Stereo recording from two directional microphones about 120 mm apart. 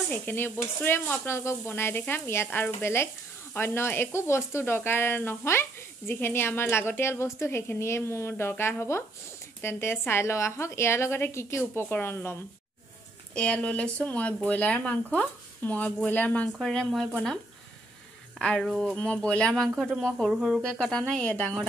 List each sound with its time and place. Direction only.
0.1 s speech: 15° left (ahead or behind)
16.5 s speech: centre (ahead or behind)
18.4 s speech: 10° left (ahead or behind)
20.3 s speech: 5° right (ahead or behind)
20.6 s speech: 5° left (ahead or behind)